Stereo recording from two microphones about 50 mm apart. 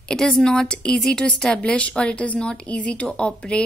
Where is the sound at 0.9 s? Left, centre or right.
Centre.